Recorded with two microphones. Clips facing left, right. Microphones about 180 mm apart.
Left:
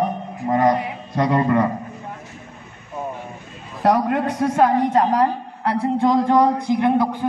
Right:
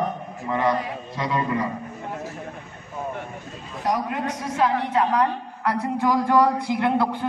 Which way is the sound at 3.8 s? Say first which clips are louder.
Left 7 dB; 60° left (ahead or behind).